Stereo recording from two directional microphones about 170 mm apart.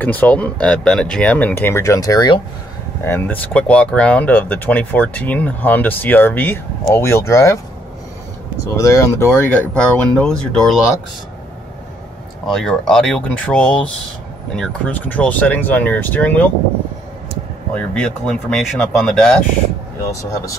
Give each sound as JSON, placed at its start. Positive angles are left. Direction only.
{"t": 0.0, "sound": "speech", "side_deg": 10}
{"t": 3.0, "sound": "speech", "side_deg": 15}
{"t": 8.7, "sound": "speech", "side_deg": 20}
{"t": 12.4, "sound": "speech", "side_deg": 5}
{"t": 17.7, "sound": "speech", "side_deg": 5}